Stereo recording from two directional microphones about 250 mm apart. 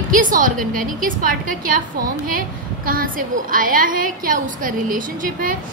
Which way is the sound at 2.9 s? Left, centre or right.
Right.